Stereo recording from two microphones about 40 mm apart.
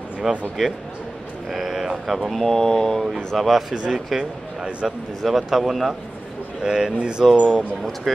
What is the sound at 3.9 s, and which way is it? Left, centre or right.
Speech, centre.